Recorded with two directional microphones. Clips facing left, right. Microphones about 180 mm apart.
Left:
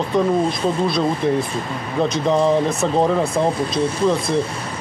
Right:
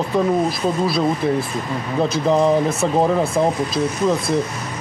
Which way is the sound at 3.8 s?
30° left (ahead or behind).